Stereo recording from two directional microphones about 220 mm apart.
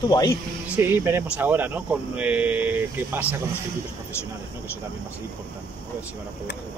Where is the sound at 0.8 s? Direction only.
10° right (ahead or behind).